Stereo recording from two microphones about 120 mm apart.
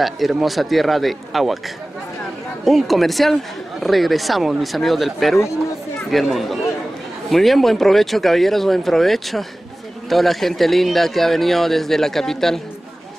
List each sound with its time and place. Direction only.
0.0 s speech: centre (ahead or behind)
2.6 s speech: centre (ahead or behind)